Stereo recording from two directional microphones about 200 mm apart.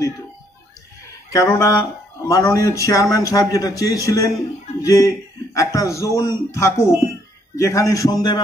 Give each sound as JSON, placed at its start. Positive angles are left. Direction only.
{"t": 1.3, "sound": "speech", "side_deg": 15}